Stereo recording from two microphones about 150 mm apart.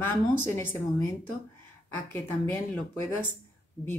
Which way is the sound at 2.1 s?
15° left (ahead or behind).